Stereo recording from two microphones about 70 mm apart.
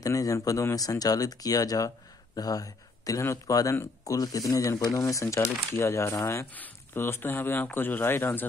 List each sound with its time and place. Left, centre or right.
0.0 s speech: left
6.5 s speech: left